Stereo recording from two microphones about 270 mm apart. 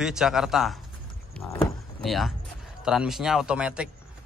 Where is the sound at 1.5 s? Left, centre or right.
Centre.